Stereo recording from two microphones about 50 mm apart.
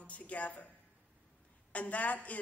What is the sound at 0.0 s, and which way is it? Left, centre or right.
Speech, left.